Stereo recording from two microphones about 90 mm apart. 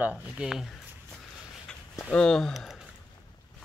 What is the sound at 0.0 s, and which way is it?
Speech, 10° right (ahead or behind).